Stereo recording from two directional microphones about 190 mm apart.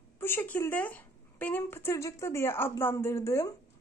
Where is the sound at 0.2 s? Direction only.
10° left (ahead or behind).